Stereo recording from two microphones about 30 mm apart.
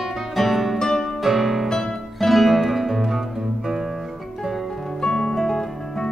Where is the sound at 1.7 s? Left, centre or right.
Centre.